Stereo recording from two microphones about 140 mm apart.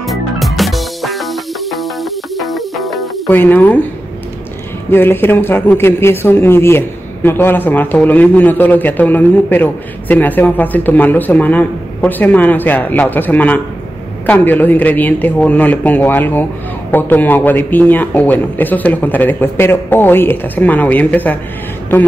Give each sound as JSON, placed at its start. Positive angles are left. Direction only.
{"t": 0.0, "sound": "music", "side_deg": 0}
{"t": 3.3, "sound": "a man's voice", "side_deg": 15}
{"t": 4.9, "sound": "a man's voice", "side_deg": 15}